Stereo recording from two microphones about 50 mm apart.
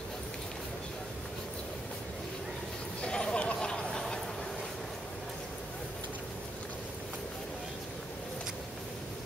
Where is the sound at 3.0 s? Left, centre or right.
Centre.